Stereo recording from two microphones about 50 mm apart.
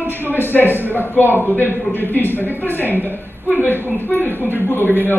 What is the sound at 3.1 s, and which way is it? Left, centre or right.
Speech, right.